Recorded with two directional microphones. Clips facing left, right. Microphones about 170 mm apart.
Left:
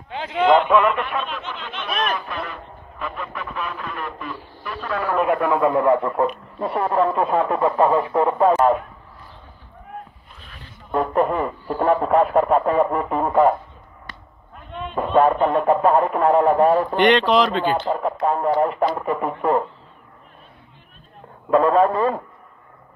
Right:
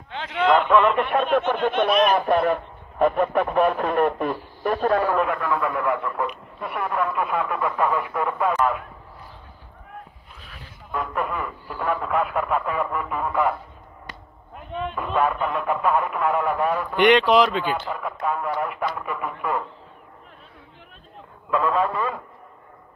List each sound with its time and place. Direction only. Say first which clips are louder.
0.5 s a man's voice: left 2 dB; 5° left (ahead or behind)
1.1 s speech: right 8 dB; 55° right (ahead or behind)
5.1 s a man's voice: left 4 dB; 20° left (ahead or behind); by 8.8 s 35° left (ahead or behind)
10.4 s a sound: even; 10° right (ahead or behind)
10.9 s speech: left 8 dB; 35° left (ahead or behind)
15.0 s speech: left 7 dB; 35° left (ahead or behind)
17.0 s speech: right 2 dB; 10° right (ahead or behind)
17.6 s speech: left 6 dB; 35° left (ahead or behind)
21.5 s speech: left 6 dB; 35° left (ahead or behind)